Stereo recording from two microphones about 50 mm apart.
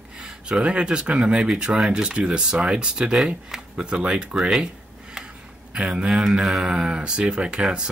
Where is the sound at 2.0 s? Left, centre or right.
Centre.